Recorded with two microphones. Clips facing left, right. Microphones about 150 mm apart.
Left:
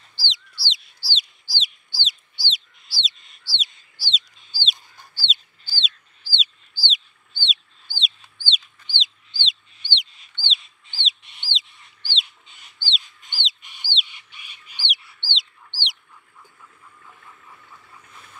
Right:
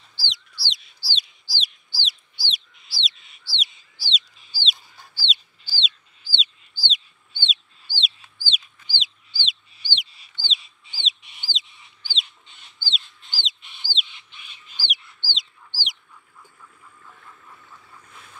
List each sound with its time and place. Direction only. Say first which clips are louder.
0.2 s a sound: left 2 dB; centre (ahead or behind)
2.0 s bird: even; centre (ahead or behind)
6.2 s bird: even; 35° left (ahead or behind)
6.9 s chicken: right 1 dB; centre (ahead or behind)
12.8 s bird: left 1 dB; centre (ahead or behind)
17.0 s duck: even; 5° left (ahead or behind)